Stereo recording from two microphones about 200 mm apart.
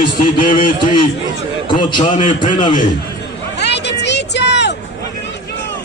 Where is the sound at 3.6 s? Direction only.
60° left (ahead or behind).